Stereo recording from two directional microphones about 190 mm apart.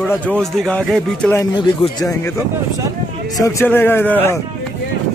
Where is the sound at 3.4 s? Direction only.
15° left (ahead or behind).